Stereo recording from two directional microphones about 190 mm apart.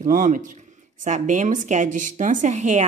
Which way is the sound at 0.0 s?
45° right (ahead or behind).